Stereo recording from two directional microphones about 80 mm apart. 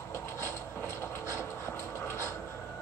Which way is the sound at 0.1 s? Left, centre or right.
Left.